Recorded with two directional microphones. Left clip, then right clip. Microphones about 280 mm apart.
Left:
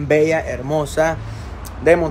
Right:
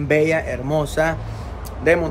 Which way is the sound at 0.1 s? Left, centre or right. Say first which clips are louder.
Left 2 dB; centre.